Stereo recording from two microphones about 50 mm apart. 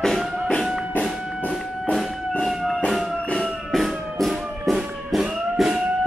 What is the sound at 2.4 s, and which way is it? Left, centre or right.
Music, centre.